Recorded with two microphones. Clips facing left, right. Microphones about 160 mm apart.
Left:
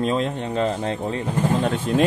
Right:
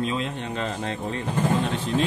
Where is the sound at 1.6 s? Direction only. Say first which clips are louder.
Left 5 dB; 50° left (ahead or behind).